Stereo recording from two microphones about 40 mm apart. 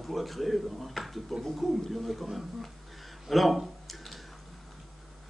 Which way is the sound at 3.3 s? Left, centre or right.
Centre.